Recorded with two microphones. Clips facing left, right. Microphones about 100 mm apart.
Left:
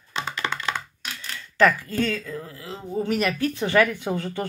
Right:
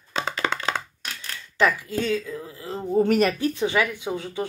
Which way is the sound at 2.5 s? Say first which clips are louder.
Right 6 dB; 30° right (ahead or behind).